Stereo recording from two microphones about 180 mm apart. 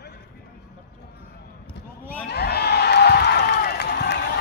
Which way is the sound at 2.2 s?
65° left (ahead or behind).